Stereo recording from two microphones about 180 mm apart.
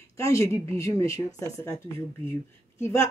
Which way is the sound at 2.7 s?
15° left (ahead or behind).